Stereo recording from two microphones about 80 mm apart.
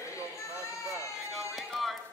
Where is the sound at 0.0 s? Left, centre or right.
Left.